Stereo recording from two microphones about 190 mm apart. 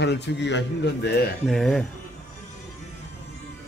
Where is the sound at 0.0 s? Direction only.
65° left (ahead or behind).